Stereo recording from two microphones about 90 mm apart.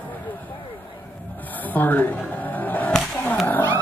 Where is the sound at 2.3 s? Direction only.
20° left (ahead or behind).